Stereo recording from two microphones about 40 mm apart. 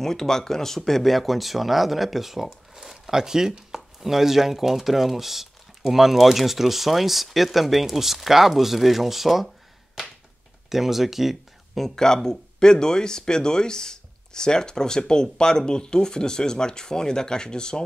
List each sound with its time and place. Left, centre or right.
0.0 s speech: centre
10.7 s speech: centre
11.8 s speech: centre